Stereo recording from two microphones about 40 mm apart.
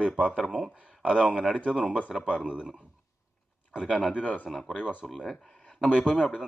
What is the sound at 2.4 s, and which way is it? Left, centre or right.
Speech, right.